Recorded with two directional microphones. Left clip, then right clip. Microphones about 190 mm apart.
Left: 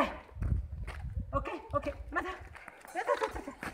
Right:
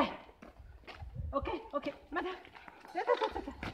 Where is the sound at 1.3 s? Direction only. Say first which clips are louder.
Left 2 dB; 30° left (ahead or behind).